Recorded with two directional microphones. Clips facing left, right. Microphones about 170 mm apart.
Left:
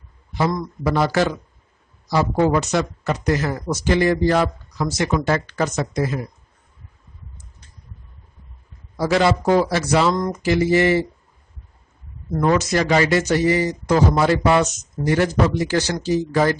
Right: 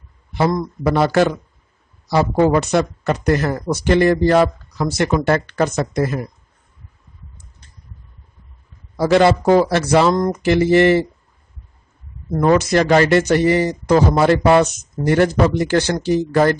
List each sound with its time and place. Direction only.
0.3 s speech: 60° right (ahead or behind)
8.9 s speech: 60° right (ahead or behind)
12.4 s speech: 55° right (ahead or behind)